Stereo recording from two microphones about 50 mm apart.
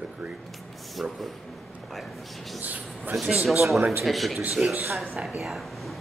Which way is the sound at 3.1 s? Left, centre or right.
Centre.